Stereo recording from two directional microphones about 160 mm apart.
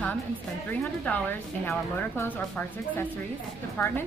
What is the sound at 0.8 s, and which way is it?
A woman's voice, 10° left (ahead or behind).